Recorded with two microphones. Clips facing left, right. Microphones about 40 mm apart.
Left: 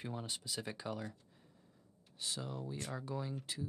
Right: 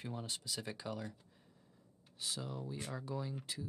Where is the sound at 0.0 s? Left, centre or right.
Centre.